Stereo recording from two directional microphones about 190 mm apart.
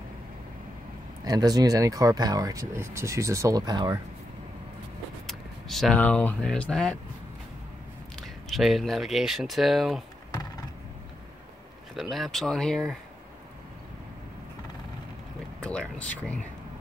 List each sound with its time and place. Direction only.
1.2 s speech: 20° right (ahead or behind)
5.2 s speech: centre (ahead or behind)
8.2 s speech: centre (ahead or behind)
11.9 s speech: centre (ahead or behind)
15.6 s speech: 5° left (ahead or behind)